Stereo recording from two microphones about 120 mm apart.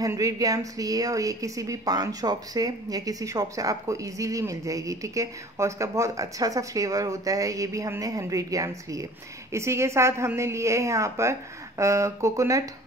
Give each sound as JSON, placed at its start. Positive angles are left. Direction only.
{"t": 0.0, "sound": "a woman's voice", "side_deg": -30}